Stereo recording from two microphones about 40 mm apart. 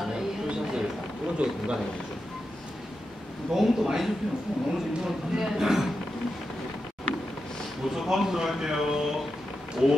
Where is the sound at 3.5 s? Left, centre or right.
Centre.